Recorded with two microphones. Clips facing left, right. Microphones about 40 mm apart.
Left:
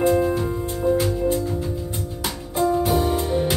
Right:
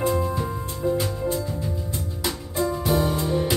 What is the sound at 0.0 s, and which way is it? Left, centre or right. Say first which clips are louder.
Music: left 5 dB; left.